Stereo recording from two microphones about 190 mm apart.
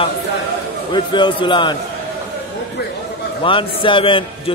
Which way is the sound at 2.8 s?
60° left (ahead or behind).